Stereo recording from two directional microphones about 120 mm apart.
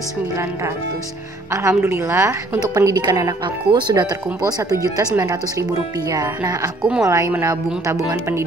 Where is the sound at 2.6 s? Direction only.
30° right (ahead or behind).